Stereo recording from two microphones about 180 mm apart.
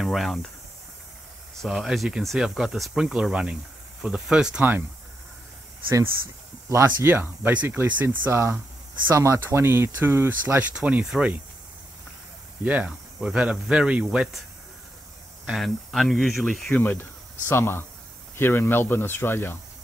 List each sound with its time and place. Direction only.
0.0 s speech: centre (ahead or behind)
1.6 s speech: centre (ahead or behind)
6.7 s speech: 15° right (ahead or behind)
12.6 s speech: 5° right (ahead or behind)
15.4 s speech: centre (ahead or behind)